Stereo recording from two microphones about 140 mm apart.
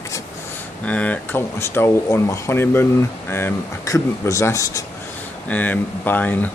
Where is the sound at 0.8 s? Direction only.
10° left (ahead or behind).